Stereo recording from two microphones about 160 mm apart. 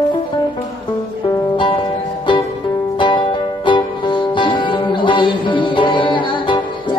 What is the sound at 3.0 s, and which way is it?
Music, 30° left (ahead or behind).